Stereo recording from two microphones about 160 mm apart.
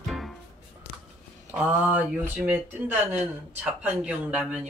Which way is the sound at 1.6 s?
10° right (ahead or behind).